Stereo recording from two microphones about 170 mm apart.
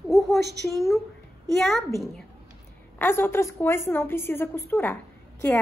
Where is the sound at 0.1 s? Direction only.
Centre (ahead or behind).